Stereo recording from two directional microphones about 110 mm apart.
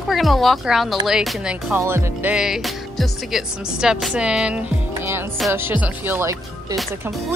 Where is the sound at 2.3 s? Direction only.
5° right (ahead or behind).